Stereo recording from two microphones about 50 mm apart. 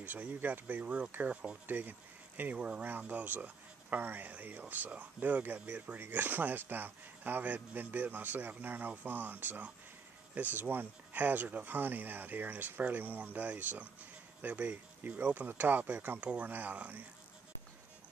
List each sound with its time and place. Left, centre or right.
0.0 s speech: right
1.3 s speech: right
1.7 s speech: right
2.5 s speech: right